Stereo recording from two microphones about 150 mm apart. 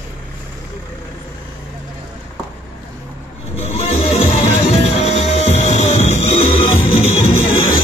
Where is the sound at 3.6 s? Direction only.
40° left (ahead or behind).